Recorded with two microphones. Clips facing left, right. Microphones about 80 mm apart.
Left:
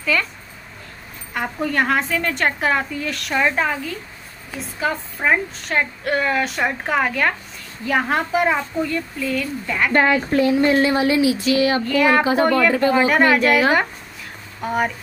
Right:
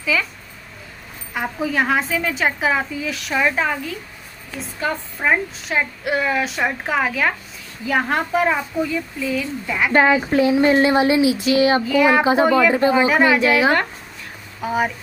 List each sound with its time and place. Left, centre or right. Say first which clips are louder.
0.0 s speech: even; centre
1.3 s a woman's voice: even; centre; by 11.4 s right
11.5 s child singing: right 4 dB; right
11.8 s a woman's voice: right 1 dB; centre